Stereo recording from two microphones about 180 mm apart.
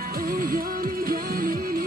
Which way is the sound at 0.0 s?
50° right (ahead or behind).